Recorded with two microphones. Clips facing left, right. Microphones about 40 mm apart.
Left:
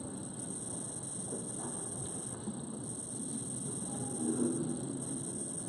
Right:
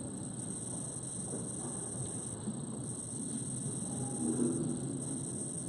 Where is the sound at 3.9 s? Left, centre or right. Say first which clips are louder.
Even; left.